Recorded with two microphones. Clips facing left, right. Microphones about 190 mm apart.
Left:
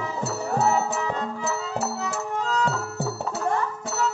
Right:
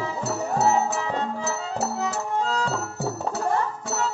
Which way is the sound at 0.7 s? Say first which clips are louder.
Right 1 dB; 30° right (ahead or behind).